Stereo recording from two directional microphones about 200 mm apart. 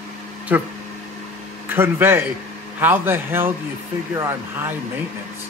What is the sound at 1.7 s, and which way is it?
Speech, 10° right (ahead or behind).